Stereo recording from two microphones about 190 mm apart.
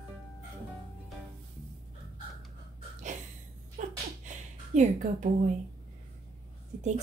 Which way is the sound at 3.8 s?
40° right (ahead or behind).